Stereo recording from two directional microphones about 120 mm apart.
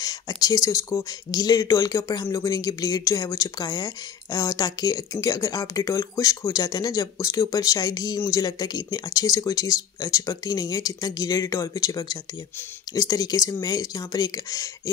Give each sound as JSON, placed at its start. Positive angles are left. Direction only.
{"t": 0.0, "sound": "speech", "side_deg": 30}